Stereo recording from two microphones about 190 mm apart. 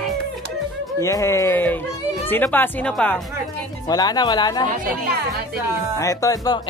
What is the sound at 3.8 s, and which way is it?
Speech, 20° left (ahead or behind).